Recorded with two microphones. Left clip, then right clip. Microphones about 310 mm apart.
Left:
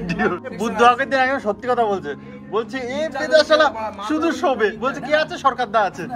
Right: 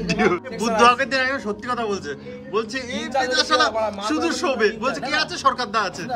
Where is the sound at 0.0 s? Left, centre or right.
Centre.